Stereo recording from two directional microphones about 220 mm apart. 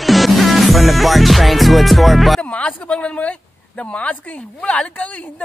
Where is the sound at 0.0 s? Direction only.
Centre (ahead or behind).